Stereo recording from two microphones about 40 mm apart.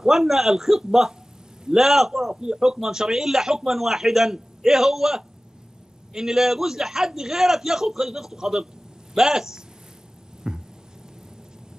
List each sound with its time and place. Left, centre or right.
0.0 s a man's voice: centre
2.4 s a man's voice: centre
10.4 s a sound: right